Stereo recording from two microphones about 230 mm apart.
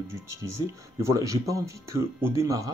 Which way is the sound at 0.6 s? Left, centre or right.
Centre.